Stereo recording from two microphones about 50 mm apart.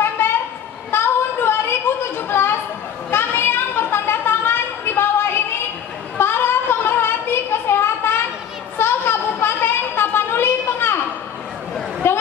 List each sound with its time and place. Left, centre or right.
0.0 s train: left
0.9 s chatter: left
3.1 s a sound: left
12.0 s chatter: left